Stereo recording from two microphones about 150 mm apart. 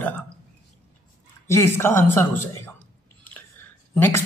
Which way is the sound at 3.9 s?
15° left (ahead or behind).